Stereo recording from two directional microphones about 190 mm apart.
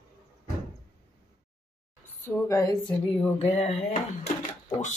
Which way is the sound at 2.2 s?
15° left (ahead or behind).